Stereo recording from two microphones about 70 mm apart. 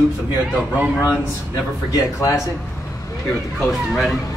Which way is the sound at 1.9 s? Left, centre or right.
Left.